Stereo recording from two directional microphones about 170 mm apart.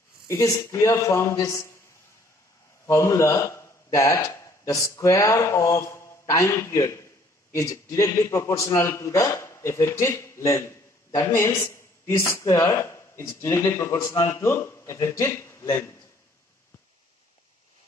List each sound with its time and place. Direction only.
0.3 s a man's voice: 20° left (ahead or behind)
2.9 s a man's voice: 15° left (ahead or behind)